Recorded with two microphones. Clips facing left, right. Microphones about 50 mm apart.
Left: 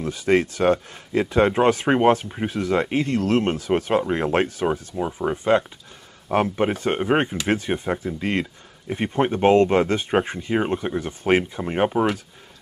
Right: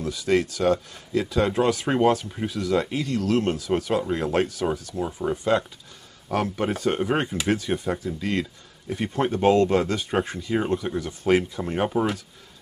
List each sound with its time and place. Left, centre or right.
0.0 s speech: left